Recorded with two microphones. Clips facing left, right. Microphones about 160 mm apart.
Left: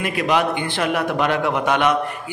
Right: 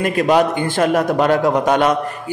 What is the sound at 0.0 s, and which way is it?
A man's voice, 45° right (ahead or behind).